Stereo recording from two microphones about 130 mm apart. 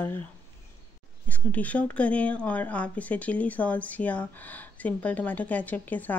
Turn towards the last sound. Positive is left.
turn(degrees=15)  # may be behind; listen again after turning